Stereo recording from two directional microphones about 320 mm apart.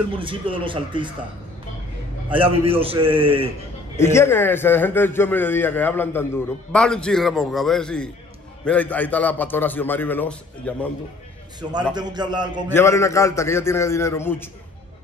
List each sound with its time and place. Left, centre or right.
0.1 s a man's voice: centre
2.3 s a man's voice: centre
3.9 s a man's voice: centre
11.7 s a man's voice: centre
12.6 s a man's voice: centre